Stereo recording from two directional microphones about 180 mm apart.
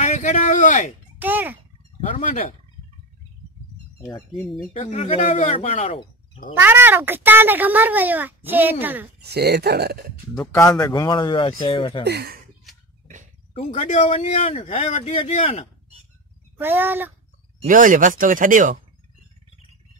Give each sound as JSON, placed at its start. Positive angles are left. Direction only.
{"t": 0.0, "sound": "a sound", "side_deg": 40}
{"t": 1.2, "sound": "a child's voice", "side_deg": -10}
{"t": 2.0, "sound": "speech", "side_deg": 35}
{"t": 4.3, "sound": "speech", "side_deg": 0}
{"t": 4.7, "sound": "speech", "side_deg": 35}
{"t": 6.5, "sound": "a child's voice", "side_deg": -10}
{"t": 9.2, "sound": "speech", "side_deg": -65}
{"t": 10.4, "sound": "speech", "side_deg": 15}
{"t": 12.0, "sound": "speech", "side_deg": -65}
{"t": 13.7, "sound": "speech", "side_deg": 40}
{"t": 16.5, "sound": "a child's voice", "side_deg": -10}
{"t": 17.6, "sound": "speech", "side_deg": -45}